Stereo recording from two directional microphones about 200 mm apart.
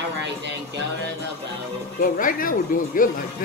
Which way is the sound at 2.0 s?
45° left (ahead or behind).